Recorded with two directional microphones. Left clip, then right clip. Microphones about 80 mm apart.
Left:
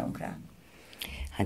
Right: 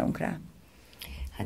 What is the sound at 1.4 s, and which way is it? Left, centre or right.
Speech, left.